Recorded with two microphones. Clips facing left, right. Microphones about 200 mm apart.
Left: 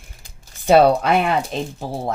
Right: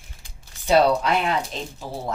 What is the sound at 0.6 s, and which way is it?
Speech, 55° left (ahead or behind).